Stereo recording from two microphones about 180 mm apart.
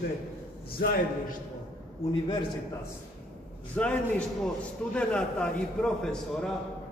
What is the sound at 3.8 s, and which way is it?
A man's voice, 5° left (ahead or behind).